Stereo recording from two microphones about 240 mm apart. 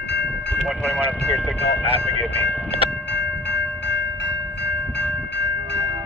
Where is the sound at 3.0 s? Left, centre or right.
Left.